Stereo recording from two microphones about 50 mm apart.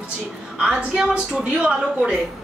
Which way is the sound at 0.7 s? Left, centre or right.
Right.